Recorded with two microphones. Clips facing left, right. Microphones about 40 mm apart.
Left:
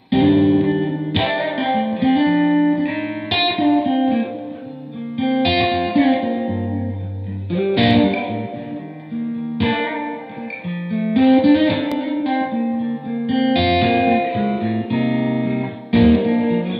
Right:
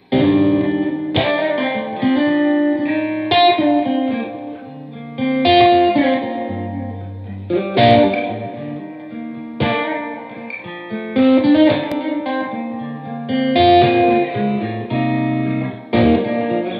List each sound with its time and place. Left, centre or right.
0.1 s music: centre
5.1 s music: centre
7.4 s music: centre
9.6 s music: centre
10.7 s music: centre
11.1 s music: centre